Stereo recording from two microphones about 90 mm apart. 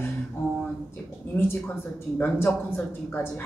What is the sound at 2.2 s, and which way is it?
A woman's voice, 25° left (ahead or behind).